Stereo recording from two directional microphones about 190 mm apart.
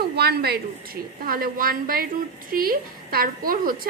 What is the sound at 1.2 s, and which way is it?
A woman's voice, 50° right (ahead or behind).